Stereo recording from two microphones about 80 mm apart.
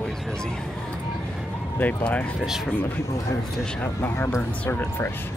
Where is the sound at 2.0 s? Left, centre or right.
Centre.